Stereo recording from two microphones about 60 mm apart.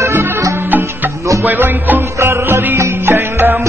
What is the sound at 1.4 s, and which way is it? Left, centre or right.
Speech, right.